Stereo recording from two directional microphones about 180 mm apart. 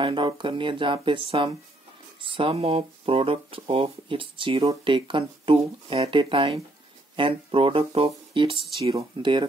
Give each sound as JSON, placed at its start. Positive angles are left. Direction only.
{"t": 0.0, "sound": "speech", "side_deg": -25}